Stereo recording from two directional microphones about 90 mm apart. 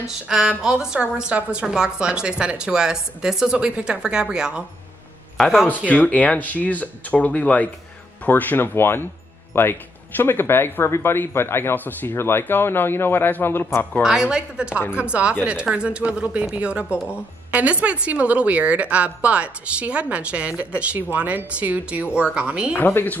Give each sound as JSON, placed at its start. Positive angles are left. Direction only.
{"t": 0.0, "sound": "a woman's voice", "side_deg": -5}
{"t": 5.9, "sound": "speech", "side_deg": 15}
{"t": 14.0, "sound": "a woman's voice", "side_deg": -10}
{"t": 22.8, "sound": "speech", "side_deg": 20}